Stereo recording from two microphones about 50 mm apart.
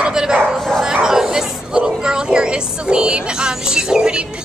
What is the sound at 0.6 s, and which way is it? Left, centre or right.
Bow-wow, centre.